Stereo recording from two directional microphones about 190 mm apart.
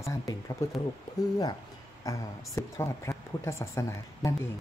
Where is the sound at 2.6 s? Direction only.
15° left (ahead or behind).